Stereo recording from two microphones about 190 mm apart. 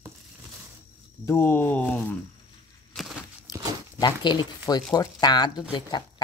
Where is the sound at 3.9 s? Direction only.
20° left (ahead or behind).